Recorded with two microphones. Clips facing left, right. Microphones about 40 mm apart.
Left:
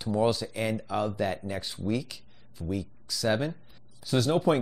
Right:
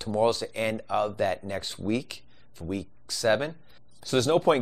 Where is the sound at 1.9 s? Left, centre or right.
Right.